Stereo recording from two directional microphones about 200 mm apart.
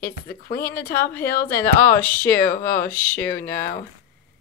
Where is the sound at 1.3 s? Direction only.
45° left (ahead or behind).